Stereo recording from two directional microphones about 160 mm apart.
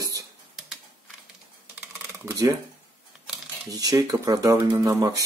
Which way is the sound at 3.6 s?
20° right (ahead or behind).